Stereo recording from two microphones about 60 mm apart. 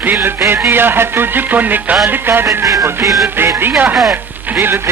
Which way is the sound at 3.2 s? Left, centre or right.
Right.